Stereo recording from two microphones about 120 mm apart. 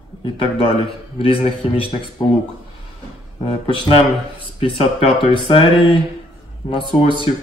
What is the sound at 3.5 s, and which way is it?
Speech, 50° left (ahead or behind).